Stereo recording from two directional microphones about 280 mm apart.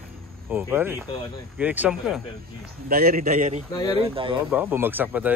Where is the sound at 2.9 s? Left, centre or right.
Right.